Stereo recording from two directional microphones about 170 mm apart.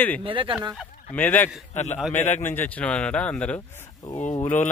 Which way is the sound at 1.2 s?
10° left (ahead or behind).